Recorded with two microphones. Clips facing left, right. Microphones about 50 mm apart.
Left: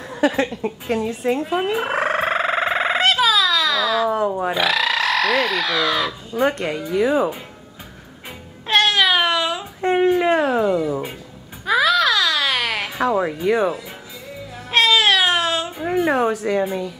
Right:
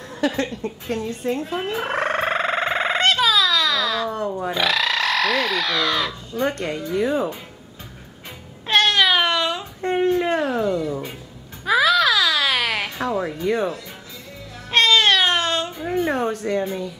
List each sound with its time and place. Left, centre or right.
0.1 s gargling: centre
4.3 s speech: centre
4.6 s speech: centre
8.6 s a sound: centre
11.6 s baby cry: centre
13.1 s speech: centre
14.7 s baby cry: centre
15.8 s speech: centre